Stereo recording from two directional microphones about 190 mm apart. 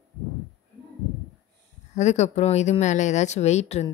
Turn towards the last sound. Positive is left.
turn(degrees=35)  # may be behind; listen again after turning